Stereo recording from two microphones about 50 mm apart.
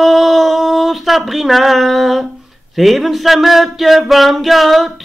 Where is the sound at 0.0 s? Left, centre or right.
Centre.